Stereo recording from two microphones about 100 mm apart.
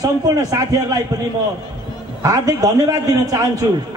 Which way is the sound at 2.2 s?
40° right (ahead or behind).